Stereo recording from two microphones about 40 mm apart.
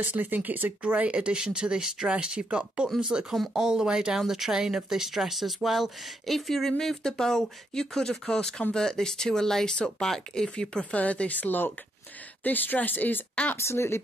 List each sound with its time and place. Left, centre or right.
0.0 s speech: right
0.8 s speech: right
1.4 s speech: centre; by 10.9 s left
10.9 s speech: left
13.6 s speech: left